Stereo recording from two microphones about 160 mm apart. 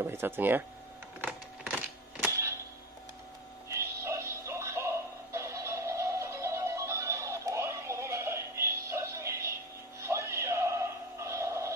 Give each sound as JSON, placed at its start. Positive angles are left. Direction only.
{"t": 0.0, "sound": "speech", "side_deg": -15}
{"t": 1.2, "sound": "a sound", "side_deg": -10}
{"t": 3.6, "sound": "music", "side_deg": -20}